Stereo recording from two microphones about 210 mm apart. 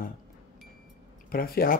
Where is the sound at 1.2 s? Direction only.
45° left (ahead or behind).